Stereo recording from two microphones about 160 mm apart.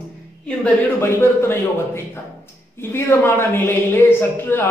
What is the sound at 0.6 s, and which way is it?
A woman's voice, 15° left (ahead or behind).